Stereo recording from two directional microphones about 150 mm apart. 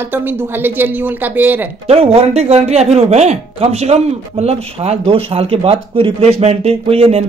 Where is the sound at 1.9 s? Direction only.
40° right (ahead or behind).